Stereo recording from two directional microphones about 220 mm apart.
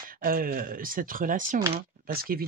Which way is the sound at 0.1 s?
40° right (ahead or behind).